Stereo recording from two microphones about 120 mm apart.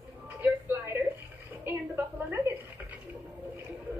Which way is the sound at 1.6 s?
15° right (ahead or behind).